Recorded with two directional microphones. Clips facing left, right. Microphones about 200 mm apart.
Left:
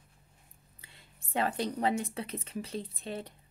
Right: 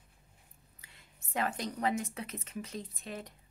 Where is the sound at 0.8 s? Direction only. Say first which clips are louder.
Left 3 dB; 30° left (ahead or behind).